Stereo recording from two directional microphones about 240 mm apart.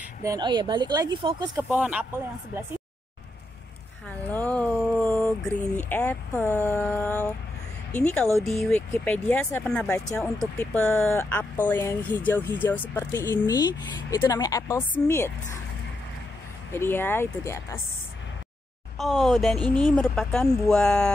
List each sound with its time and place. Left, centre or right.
0.2 s speech: centre
1.8 s speech: centre
4.3 s speech: centre
16.7 s speech: centre
18.9 s speech: centre